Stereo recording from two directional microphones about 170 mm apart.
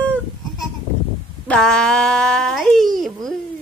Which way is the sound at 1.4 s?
5° left (ahead or behind).